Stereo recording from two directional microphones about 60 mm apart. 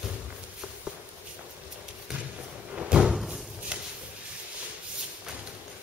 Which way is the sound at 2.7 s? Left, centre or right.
Centre.